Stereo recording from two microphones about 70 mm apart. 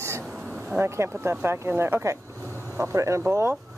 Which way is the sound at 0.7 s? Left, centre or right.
Right.